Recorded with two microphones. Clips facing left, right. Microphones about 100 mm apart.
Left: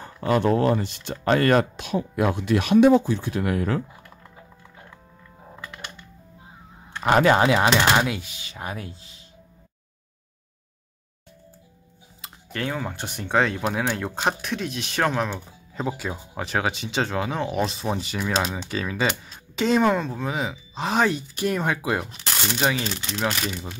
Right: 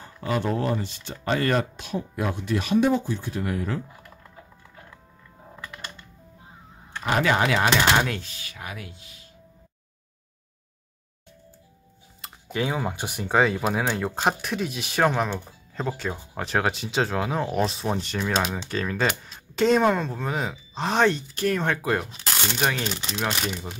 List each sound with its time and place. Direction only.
0.0 s speech: 55° left (ahead or behind); by 3.8 s 70° left (ahead or behind)
7.2 s speech: 25° left (ahead or behind)
7.9 s speech: 10° left (ahead or behind)
8.5 s speech: 35° left (ahead or behind)
12.2 s speech: 10° right (ahead or behind)